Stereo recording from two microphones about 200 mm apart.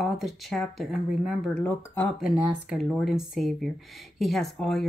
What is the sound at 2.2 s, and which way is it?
Speech, 5° right (ahead or behind).